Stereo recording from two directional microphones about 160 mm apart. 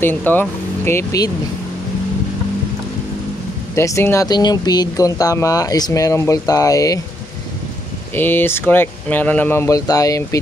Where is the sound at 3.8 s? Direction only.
15° left (ahead or behind).